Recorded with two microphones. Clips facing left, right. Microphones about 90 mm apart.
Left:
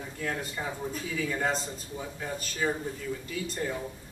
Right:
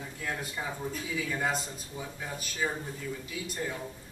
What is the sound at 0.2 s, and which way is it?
A man's voice, 5° right (ahead or behind).